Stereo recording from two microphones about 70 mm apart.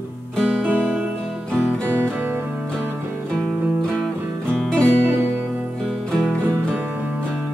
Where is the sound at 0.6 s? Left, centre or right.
Right.